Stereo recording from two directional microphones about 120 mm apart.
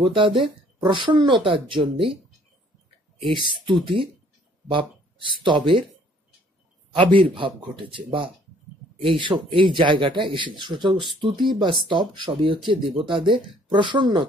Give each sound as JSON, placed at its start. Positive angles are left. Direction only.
{"t": 0.0, "sound": "speech", "side_deg": -45}
{"t": 3.2, "sound": "speech", "side_deg": -45}
{"t": 7.0, "sound": "speech", "side_deg": -45}